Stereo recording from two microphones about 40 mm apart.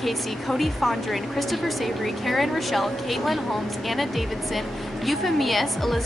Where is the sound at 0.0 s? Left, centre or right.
Centre.